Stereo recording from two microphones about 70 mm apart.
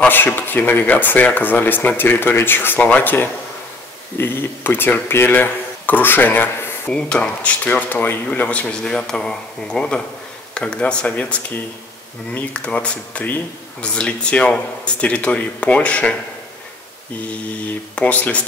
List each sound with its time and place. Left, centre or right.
0.1 s speech: left
6.9 s speech: centre
17.9 s speech: left